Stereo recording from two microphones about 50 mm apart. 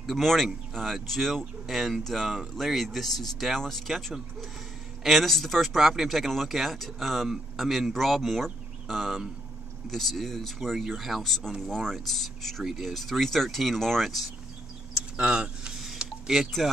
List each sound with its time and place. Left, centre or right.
0.0 s speech: centre
15.1 s speech: centre
16.0 s a sound: centre
16.6 s speech: centre